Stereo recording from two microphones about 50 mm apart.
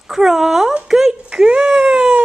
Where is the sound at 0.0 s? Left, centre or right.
Centre.